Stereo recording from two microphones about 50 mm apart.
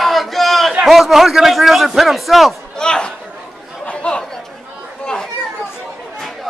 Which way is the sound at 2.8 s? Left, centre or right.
Centre.